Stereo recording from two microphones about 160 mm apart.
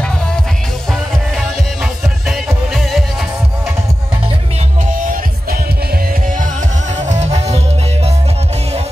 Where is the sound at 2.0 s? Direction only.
Centre (ahead or behind).